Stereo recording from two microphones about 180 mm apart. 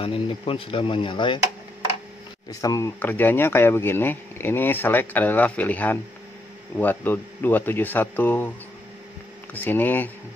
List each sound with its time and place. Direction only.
0.0 s speech: 30° left (ahead or behind)
2.6 s speech: 20° left (ahead or behind)
9.5 s speech: 10° left (ahead or behind)